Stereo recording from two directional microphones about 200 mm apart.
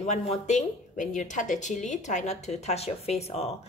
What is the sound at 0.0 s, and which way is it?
Speech, 35° left (ahead or behind).